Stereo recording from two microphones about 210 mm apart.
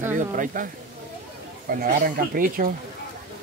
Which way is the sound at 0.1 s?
40° right (ahead or behind).